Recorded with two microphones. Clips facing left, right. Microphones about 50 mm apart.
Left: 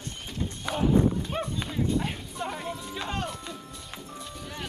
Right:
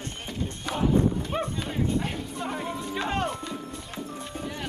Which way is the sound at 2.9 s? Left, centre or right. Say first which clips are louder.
Right 6 dB; centre.